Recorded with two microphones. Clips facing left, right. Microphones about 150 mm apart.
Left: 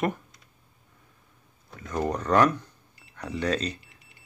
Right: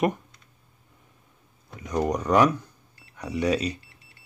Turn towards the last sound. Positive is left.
turn(degrees=-10)  # may be behind; listen again after turning